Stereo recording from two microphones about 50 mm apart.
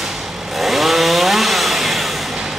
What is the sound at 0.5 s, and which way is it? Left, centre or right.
Chainsaw, centre.